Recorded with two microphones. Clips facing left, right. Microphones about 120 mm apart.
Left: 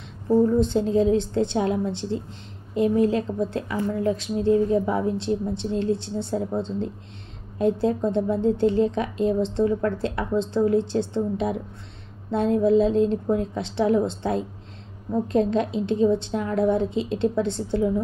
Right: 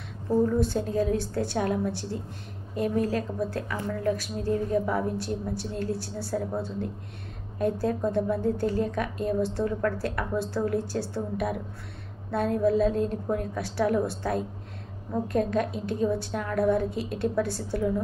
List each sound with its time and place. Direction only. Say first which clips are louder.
0.5 s a woman's voice: left 5 dB; 20° left (ahead or behind)